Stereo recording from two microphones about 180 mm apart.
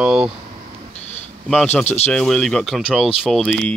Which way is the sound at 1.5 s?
5° left (ahead or behind).